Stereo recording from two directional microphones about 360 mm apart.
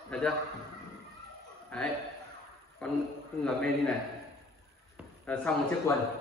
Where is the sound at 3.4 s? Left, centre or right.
Centre.